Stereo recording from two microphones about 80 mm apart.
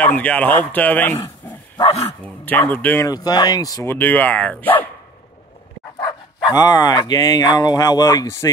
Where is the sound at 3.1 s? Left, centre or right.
Left.